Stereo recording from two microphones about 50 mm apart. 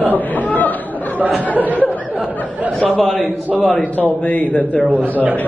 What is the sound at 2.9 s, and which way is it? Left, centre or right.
Speech, centre.